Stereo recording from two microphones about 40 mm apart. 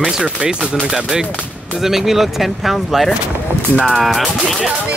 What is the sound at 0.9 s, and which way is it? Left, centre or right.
Speech, centre.